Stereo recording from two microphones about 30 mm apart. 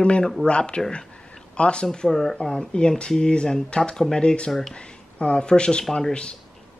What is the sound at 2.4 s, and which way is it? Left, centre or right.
Speech, left.